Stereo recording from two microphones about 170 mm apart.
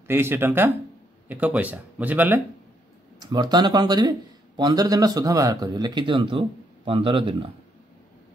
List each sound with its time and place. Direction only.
0.1 s speech: 15° right (ahead or behind)
3.2 s speech: 25° right (ahead or behind)